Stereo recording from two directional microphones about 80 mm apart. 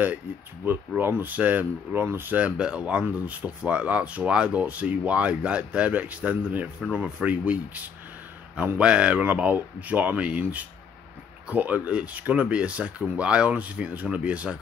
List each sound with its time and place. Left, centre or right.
0.7 s speech: right
2.4 s speech: centre